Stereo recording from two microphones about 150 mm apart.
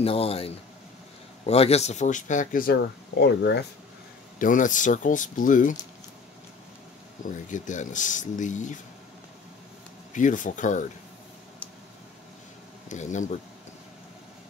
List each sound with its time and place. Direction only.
0.0 s speech: 40° left (ahead or behind); by 3.3 s 90° left
4.4 s speech: 60° left (ahead or behind)
7.2 s speech: 55° left (ahead or behind)
10.1 s speech: 60° left (ahead or behind)
12.8 s speech: 55° left (ahead or behind)